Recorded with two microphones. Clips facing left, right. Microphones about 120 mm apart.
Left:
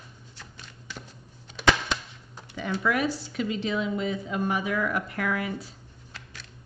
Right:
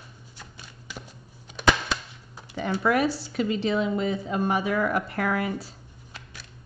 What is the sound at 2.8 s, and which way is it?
A woman's voice, 35° right (ahead or behind).